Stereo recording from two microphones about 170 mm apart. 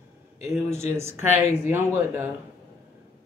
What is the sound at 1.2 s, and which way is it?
Speech, 40° left (ahead or behind).